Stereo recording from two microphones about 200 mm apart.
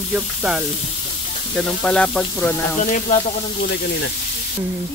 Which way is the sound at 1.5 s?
5° left (ahead or behind).